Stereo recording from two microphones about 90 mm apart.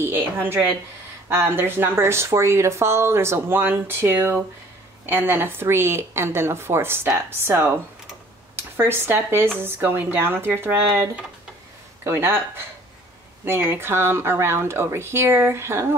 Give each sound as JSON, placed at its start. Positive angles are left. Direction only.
{"t": 0.0, "sound": "speech", "side_deg": -25}